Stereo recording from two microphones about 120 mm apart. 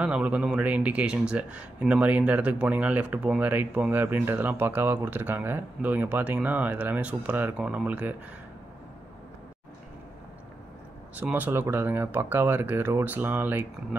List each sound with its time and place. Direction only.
0.0 s speech: 10° right (ahead or behind)
11.1 s speech: 15° right (ahead or behind)